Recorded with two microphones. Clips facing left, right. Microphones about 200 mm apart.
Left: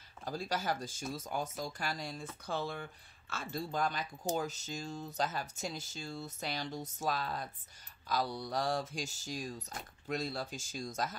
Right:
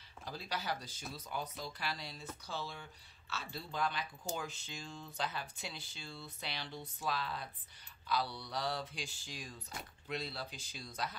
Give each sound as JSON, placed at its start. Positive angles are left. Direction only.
{"t": 0.2, "sound": "speech", "side_deg": 45}